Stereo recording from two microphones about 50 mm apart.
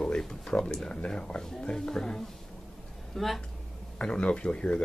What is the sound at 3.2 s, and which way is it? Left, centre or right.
Chuckle, centre.